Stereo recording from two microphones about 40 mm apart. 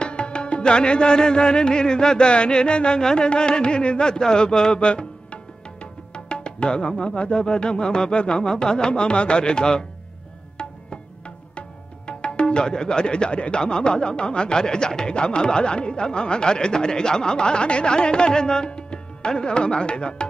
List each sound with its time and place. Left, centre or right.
0.0 s music: left
12.1 s speech: left